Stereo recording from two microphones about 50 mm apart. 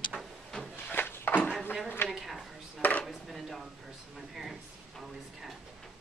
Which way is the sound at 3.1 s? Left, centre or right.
Centre.